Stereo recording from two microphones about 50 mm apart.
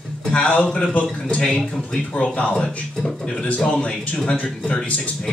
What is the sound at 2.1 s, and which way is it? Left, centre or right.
Speech, left.